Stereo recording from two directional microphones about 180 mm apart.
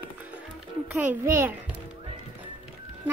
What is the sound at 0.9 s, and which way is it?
Speech, 10° right (ahead or behind).